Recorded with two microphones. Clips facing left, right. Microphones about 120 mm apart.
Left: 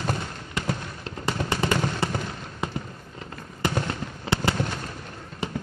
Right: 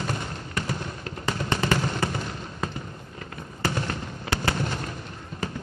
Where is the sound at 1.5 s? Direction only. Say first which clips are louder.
Right 1 dB; 15° left (ahead or behind).